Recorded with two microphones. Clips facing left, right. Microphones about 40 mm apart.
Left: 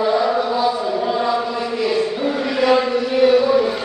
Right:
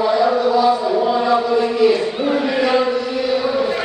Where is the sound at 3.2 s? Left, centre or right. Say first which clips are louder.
Left 8 dB; left.